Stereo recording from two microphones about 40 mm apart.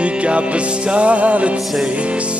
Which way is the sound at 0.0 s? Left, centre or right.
Right.